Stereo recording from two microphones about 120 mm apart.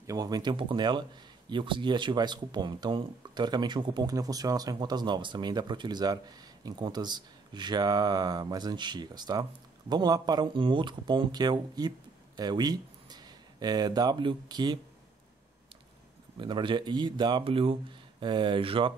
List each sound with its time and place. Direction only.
0.0 s speech: 30° right (ahead or behind)
16.3 s speech: 40° right (ahead or behind)